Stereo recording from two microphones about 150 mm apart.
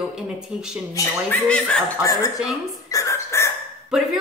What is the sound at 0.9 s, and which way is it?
Speech, 20° left (ahead or behind).